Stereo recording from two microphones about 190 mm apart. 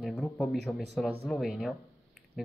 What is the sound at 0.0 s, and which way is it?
Speech, centre (ahead or behind).